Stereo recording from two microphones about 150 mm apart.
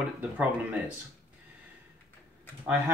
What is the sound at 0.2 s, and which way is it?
Speech, 10° right (ahead or behind).